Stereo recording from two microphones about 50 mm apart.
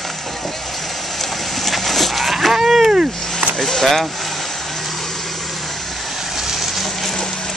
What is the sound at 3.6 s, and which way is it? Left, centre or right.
Speech, centre.